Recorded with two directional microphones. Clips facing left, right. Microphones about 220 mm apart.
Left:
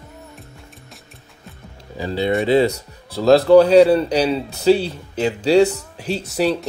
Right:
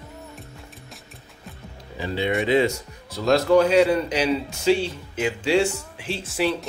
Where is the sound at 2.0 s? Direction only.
35° left (ahead or behind).